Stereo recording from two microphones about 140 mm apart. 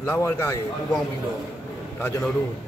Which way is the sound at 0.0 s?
15° left (ahead or behind).